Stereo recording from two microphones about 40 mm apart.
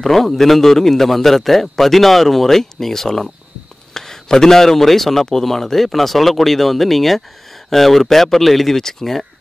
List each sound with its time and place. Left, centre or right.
0.0 s speech: centre